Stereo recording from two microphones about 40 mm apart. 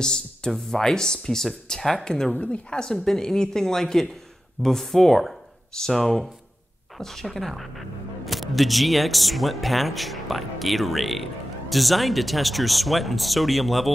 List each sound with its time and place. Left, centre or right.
0.0 s speech: centre
2.4 s speech: left
2.8 s speech: centre